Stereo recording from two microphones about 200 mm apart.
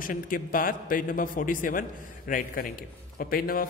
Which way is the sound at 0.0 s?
45° left (ahead or behind).